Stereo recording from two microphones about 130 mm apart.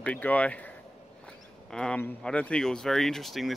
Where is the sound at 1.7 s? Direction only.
5° left (ahead or behind).